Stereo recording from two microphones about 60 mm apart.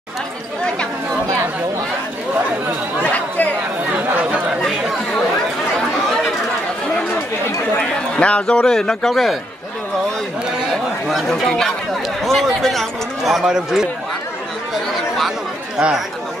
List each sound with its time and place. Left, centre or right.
3.0 s chatter: left
4.2 s chatter: centre
8.2 s a man's voice: centre
10.7 s speech: centre